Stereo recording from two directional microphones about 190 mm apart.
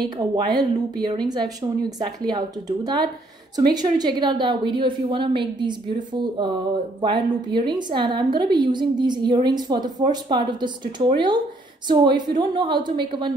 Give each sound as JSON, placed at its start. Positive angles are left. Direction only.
{"t": 0.3, "sound": "a woman's voice", "side_deg": -25}